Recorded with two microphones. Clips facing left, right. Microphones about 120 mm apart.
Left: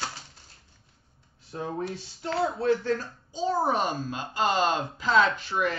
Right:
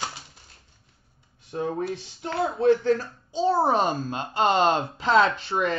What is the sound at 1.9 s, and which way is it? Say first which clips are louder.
A child's voice: right 1 dB; 25° right (ahead or behind).